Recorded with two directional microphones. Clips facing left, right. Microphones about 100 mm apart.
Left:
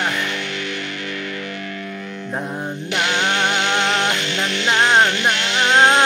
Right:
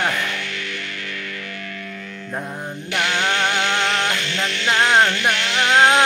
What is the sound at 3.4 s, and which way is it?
Music, 20° left (ahead or behind).